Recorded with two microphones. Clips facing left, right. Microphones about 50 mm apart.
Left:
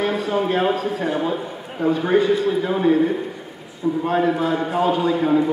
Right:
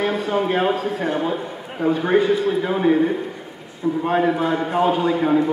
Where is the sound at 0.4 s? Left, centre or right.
Centre.